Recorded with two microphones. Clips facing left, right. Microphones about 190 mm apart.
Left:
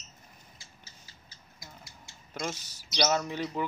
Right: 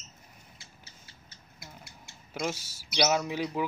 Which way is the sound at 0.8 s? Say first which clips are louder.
Right 1 dB; 60° right (ahead or behind).